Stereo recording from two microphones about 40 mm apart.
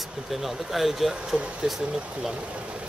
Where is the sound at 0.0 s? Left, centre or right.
Centre.